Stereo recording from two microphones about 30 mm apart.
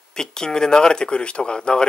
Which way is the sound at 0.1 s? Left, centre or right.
Left.